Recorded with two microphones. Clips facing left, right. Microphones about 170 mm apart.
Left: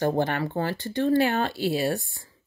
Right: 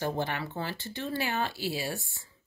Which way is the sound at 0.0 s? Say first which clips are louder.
Left 7 dB; 50° left (ahead or behind).